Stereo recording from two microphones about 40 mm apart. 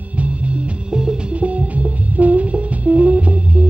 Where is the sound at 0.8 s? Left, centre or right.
Right.